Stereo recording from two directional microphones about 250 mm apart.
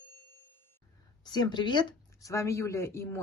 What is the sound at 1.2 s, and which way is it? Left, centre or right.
Speech, centre.